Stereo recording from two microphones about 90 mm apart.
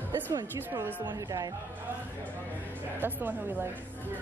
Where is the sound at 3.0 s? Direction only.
20° right (ahead or behind).